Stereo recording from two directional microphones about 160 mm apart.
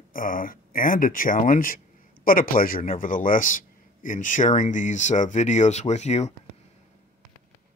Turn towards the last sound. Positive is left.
turn(degrees=45)  # may be behind; listen again after turning